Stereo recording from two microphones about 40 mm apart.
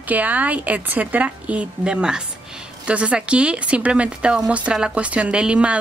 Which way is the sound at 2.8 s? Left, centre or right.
Right.